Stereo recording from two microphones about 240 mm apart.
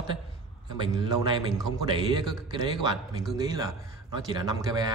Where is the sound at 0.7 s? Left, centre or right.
Centre.